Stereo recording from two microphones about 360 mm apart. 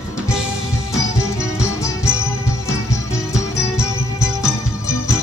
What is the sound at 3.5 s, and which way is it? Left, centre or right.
Music, centre.